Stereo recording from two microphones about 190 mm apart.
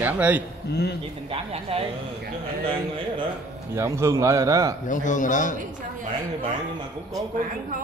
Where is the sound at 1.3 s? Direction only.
30° right (ahead or behind).